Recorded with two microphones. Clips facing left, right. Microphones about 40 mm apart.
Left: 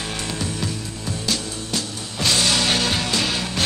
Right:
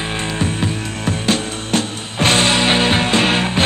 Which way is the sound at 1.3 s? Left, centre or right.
Right.